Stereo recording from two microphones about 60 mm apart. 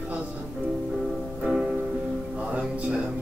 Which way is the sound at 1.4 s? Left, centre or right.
Centre.